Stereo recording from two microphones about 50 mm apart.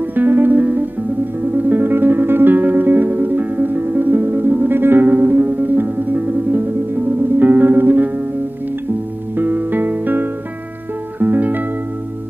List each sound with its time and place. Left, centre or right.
0.0 s music: right
9.4 s music: right